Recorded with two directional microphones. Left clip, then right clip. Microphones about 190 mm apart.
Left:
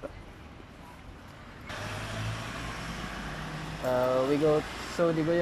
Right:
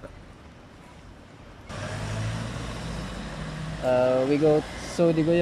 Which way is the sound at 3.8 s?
15° right (ahead or behind).